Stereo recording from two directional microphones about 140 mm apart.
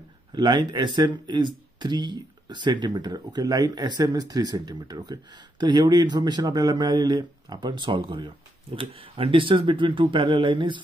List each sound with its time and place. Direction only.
0.3 s speech: 30° right (ahead or behind)